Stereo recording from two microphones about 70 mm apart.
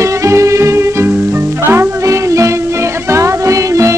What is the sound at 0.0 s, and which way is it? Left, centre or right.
Music, right.